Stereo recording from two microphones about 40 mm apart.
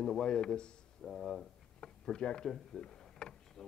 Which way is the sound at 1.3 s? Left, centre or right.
Left.